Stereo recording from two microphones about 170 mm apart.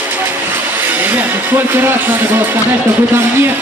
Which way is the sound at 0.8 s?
10° right (ahead or behind).